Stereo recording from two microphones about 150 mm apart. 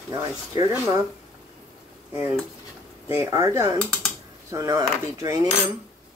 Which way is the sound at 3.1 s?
20° right (ahead or behind).